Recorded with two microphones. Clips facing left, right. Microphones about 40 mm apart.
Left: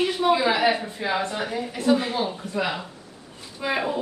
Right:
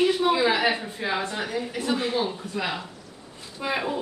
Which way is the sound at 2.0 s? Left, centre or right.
Centre.